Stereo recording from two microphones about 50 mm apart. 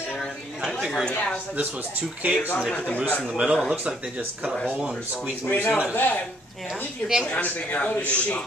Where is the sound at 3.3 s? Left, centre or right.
Centre.